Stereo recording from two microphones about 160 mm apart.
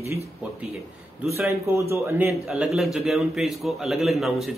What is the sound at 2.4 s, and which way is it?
Speech, centre (ahead or behind).